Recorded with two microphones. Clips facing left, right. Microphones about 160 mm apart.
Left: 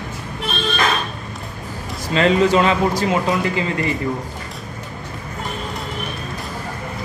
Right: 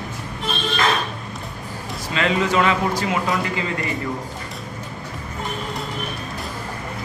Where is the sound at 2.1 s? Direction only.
35° left (ahead or behind).